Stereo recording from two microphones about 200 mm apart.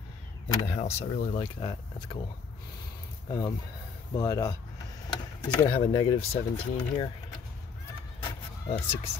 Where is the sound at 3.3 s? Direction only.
20° left (ahead or behind).